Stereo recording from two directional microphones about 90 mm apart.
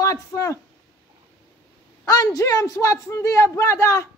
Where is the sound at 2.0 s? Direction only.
40° left (ahead or behind).